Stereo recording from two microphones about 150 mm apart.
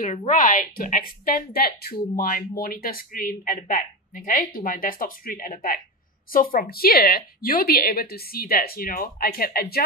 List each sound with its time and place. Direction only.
0.3 s a woman's voice: 65° left (ahead or behind); by 9.8 s 90° left